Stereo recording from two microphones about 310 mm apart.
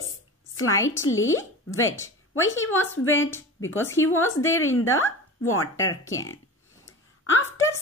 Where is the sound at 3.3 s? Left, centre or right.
Centre.